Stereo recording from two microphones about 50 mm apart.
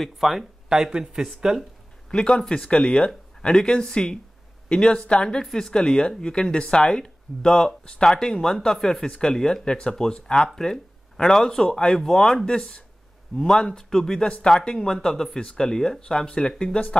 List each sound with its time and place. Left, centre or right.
0.0 s speech: centre
0.7 s speech: centre
2.0 s speech: centre